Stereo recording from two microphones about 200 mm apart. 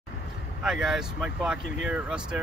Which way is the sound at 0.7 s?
5° right (ahead or behind).